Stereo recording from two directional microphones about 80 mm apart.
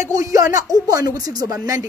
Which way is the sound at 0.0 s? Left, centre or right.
Right.